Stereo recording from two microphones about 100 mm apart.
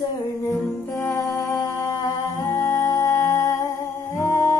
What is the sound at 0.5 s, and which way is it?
Music, 25° left (ahead or behind).